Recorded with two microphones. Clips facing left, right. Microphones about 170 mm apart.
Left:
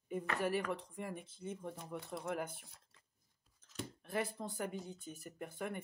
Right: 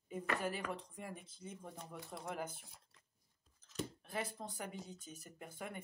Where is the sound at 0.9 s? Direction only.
55° left (ahead or behind).